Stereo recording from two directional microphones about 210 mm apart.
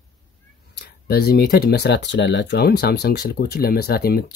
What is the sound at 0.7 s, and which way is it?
Speech, 50° left (ahead or behind).